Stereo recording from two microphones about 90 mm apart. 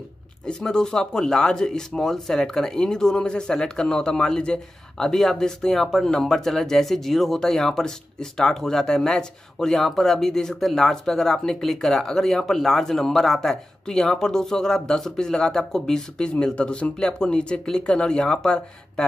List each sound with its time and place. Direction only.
0.5 s speech: 5° left (ahead or behind)